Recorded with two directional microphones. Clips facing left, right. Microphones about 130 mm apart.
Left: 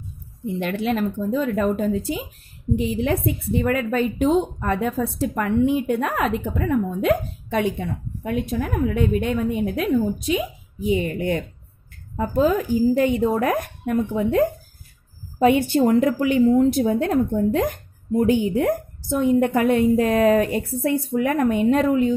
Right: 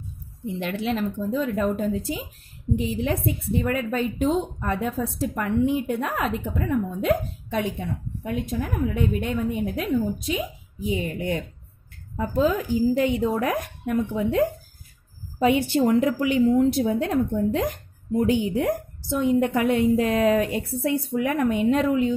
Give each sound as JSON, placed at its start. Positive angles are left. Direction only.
{"t": 0.6, "sound": "speech", "side_deg": 55}
{"t": 10.9, "sound": "speech", "side_deg": 60}
{"t": 12.2, "sound": "a woman's voice", "side_deg": 45}